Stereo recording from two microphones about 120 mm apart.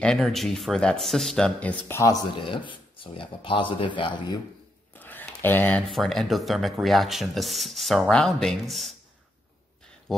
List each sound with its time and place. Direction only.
0.0 s speech: 5° left (ahead or behind)
2.3 s speech: 45° left (ahead or behind)
4.9 s a sound: 15° left (ahead or behind)
5.9 s speech: centre (ahead or behind)